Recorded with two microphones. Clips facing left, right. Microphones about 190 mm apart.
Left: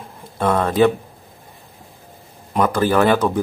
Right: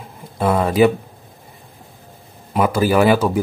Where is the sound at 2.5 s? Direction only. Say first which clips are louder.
Right 1 dB; 10° right (ahead or behind).